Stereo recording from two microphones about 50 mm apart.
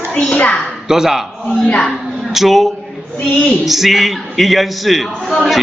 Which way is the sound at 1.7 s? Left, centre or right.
Left.